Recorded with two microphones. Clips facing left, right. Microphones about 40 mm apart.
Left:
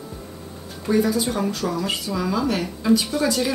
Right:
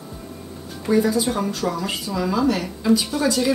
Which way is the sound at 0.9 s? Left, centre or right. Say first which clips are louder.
Right 1 dB; centre.